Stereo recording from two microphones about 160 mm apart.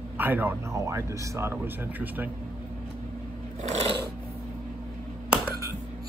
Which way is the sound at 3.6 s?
45° right (ahead or behind).